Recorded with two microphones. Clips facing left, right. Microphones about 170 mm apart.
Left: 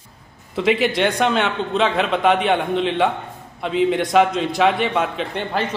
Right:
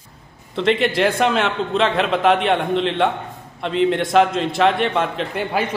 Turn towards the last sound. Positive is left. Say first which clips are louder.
# right 1 dB
turn(degrees=-10)  # may be behind; listen again after turning